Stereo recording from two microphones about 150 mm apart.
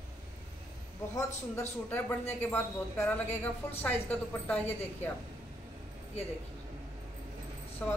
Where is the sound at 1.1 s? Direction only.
15° left (ahead or behind).